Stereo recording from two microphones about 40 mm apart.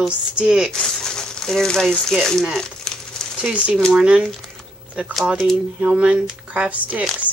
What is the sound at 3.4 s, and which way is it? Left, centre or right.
Speech, right.